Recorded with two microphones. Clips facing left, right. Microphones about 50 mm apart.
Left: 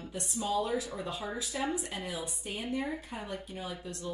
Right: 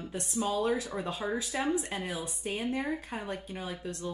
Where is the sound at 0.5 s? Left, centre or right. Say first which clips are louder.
Even; right.